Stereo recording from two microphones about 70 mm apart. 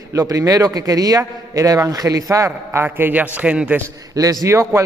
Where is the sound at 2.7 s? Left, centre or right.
Right.